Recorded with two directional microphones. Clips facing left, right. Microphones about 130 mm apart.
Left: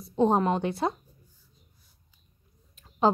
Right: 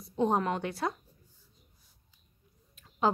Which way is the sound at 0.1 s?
30° left (ahead or behind).